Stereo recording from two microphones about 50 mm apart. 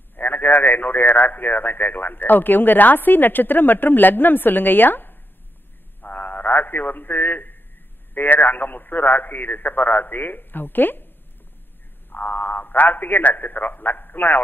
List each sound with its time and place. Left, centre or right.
0.1 s a man's voice: left
12.1 s a man's voice: left